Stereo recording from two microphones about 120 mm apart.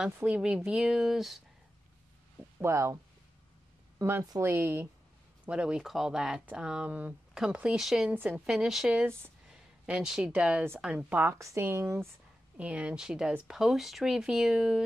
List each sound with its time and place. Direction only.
0.0 s speech: 10° right (ahead or behind)
2.6 s speech: 25° right (ahead or behind)
4.0 s speech: 25° right (ahead or behind)
5.4 s speech: 10° right (ahead or behind)
8.1 s speech: 15° right (ahead or behind)
8.5 s speech: 5° right (ahead or behind); by 12.1 s 20° right (ahead or behind)
12.5 s speech: 10° right (ahead or behind)